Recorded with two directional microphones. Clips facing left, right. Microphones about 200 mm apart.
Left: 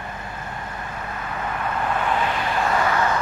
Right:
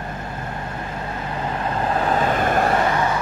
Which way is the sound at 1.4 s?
30° right (ahead or behind).